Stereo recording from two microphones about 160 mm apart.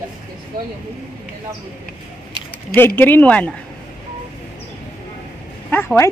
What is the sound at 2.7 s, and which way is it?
Speech, 15° left (ahead or behind).